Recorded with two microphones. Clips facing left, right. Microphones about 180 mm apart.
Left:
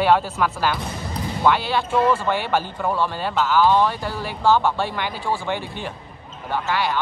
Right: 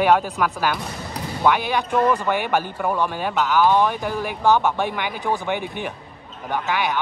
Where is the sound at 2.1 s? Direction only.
15° right (ahead or behind).